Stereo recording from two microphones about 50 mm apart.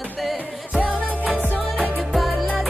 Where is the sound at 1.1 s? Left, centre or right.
Right.